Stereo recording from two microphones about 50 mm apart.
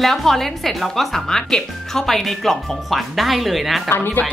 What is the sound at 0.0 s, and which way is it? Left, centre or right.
Speech, centre.